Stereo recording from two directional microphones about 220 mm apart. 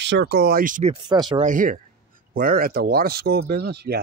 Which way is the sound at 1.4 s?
35° right (ahead or behind).